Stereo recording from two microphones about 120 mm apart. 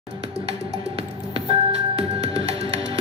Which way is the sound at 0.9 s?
55° right (ahead or behind).